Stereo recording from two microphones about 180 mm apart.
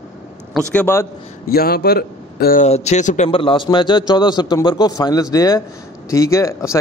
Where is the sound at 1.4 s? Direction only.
60° left (ahead or behind).